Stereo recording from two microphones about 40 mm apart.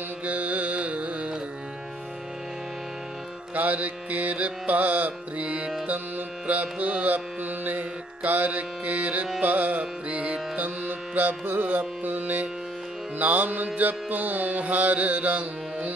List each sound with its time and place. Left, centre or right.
0.2 s carnatic music: right
3.5 s music: right
5.4 s music: right